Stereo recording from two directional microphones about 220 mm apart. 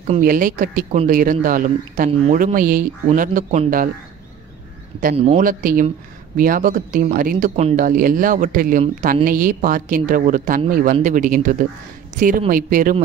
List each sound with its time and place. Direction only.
0.0 s speech: 35° right (ahead or behind)
5.1 s speech: 30° right (ahead or behind)